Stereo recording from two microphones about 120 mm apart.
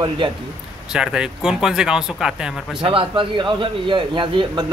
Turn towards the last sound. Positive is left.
turn(degrees=-45)  # may be behind; listen again after turning